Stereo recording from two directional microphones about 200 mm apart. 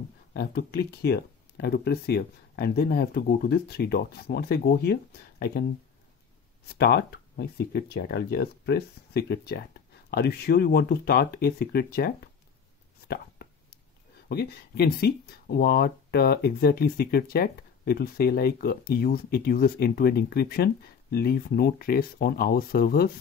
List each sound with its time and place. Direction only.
0.3 s speech: 50° left (ahead or behind)
6.7 s speech: 55° left (ahead or behind)
14.3 s speech: 50° left (ahead or behind)